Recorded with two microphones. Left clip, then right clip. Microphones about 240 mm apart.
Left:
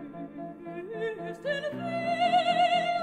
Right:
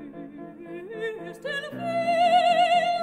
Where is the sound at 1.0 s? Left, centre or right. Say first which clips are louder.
Right 1 dB; right.